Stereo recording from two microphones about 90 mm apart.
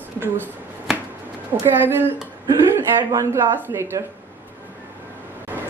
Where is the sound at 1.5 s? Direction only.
55° right (ahead or behind).